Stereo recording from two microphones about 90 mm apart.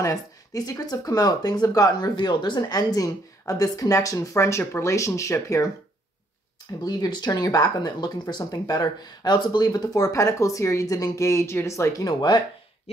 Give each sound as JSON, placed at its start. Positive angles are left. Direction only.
{"t": 0.0, "sound": "speech", "side_deg": 40}
{"t": 2.1, "sound": "a woman's voice", "side_deg": 60}
{"t": 6.8, "sound": "speech", "side_deg": 50}